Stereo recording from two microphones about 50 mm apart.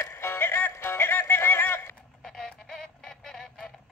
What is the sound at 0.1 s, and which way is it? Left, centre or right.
Music, left.